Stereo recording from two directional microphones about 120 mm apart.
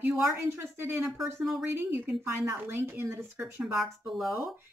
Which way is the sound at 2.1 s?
15° right (ahead or behind).